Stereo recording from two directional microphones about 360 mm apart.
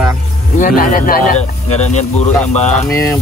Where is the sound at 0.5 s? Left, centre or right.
Left.